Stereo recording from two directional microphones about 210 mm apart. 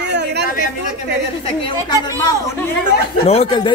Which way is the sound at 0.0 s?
55° right (ahead or behind).